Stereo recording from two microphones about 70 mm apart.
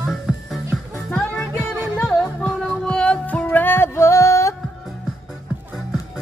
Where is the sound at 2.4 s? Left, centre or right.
Centre; by 3.8 s left.